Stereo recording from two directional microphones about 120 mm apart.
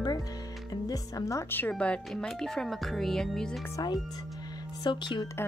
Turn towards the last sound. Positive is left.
turn(degrees=40)  # may be behind; listen again after turning